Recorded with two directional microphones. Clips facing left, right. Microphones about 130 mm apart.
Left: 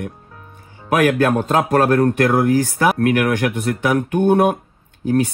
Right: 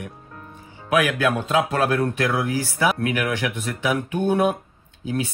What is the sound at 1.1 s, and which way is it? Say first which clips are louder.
Speech: left 5 dB; 50° left (ahead or behind).